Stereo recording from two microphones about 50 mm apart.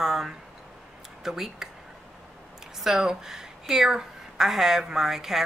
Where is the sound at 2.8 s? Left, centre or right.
Centre.